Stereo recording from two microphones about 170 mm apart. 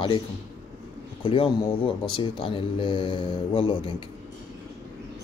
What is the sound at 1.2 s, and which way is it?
A man's voice, 30° left (ahead or behind).